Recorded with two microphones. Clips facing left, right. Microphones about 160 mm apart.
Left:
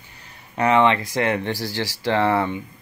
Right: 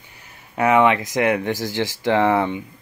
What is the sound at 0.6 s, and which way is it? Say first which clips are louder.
Speech: right 1 dB; 10° right (ahead or behind).